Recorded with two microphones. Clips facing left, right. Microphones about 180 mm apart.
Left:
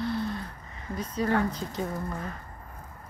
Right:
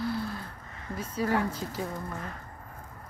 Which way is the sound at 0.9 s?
5° right (ahead or behind).